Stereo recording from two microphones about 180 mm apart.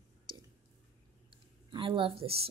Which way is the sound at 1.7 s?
30° right (ahead or behind).